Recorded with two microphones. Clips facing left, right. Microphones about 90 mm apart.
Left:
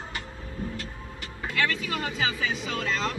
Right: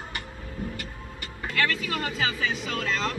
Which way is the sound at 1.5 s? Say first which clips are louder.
Right 1 dB; centre (ahead or behind).